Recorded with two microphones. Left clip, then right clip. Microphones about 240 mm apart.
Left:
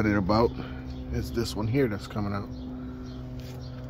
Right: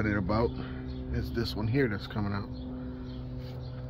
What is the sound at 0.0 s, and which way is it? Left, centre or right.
Speech, centre.